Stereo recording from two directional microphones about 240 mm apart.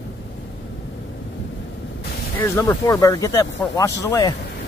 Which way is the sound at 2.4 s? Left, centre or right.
Centre.